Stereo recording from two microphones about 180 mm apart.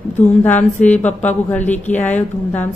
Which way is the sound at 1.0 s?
10° left (ahead or behind).